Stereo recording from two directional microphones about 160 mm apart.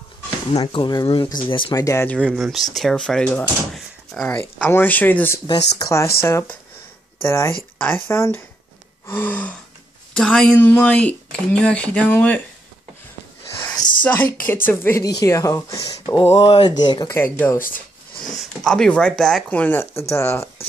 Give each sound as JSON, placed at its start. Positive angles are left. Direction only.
{"t": 0.6, "sound": "speech", "side_deg": 25}
{"t": 1.7, "sound": "speech", "side_deg": 20}
{"t": 2.1, "sound": "speech", "side_deg": -5}
{"t": 14.0, "sound": "speech", "side_deg": 10}
{"t": 16.2, "sound": "speech", "side_deg": 30}
{"t": 17.1, "sound": "speech", "side_deg": 15}